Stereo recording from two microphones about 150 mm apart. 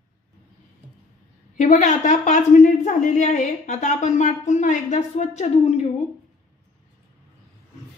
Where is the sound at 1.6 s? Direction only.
55° left (ahead or behind).